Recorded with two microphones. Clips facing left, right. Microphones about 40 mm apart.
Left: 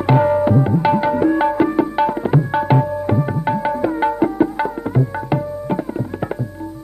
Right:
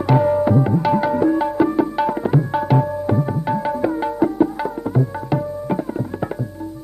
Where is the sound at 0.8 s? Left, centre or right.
Left.